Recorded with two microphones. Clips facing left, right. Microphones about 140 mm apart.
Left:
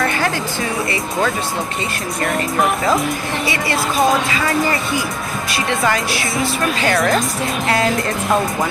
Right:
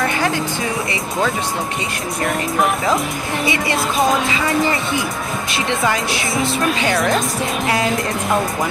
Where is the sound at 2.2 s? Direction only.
Centre (ahead or behind).